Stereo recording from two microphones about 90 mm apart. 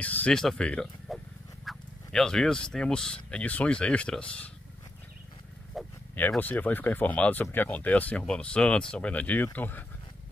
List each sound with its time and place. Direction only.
0.0 s speech: 15° left (ahead or behind)
5.7 s wild animals: centre (ahead or behind)
6.4 s speech: 20° left (ahead or behind)